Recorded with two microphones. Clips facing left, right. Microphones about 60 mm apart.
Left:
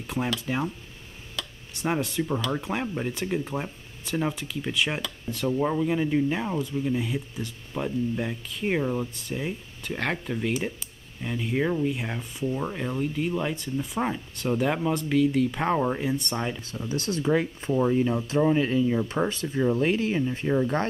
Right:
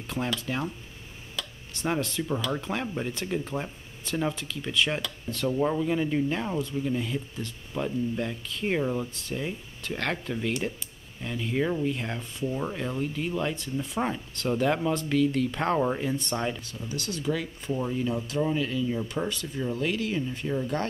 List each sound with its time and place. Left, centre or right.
0.5 s speech: centre
16.8 s speech: left